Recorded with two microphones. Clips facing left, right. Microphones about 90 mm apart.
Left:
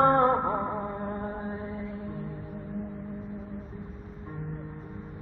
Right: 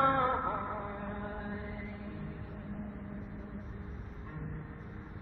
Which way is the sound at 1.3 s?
30° left (ahead or behind).